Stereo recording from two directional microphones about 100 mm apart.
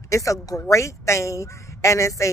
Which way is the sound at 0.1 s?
30° left (ahead or behind).